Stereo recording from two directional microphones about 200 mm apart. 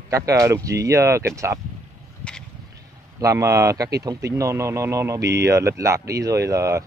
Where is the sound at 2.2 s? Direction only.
5° left (ahead or behind).